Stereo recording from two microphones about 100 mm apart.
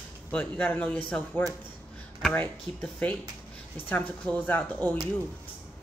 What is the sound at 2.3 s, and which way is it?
Speech, 15° left (ahead or behind).